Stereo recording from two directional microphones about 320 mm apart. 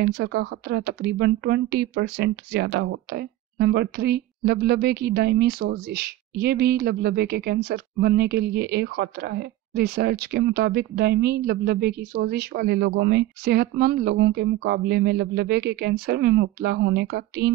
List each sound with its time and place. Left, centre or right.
0.0 s speech: right